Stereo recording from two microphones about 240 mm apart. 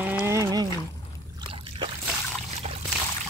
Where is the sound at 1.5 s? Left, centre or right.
Right.